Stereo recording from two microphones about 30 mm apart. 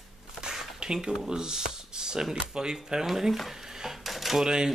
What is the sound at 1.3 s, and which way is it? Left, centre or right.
Speech, right.